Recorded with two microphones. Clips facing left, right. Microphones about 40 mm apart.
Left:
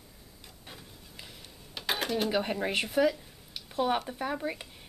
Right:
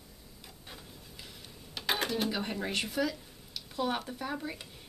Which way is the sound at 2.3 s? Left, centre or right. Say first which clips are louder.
Left 5 dB; centre.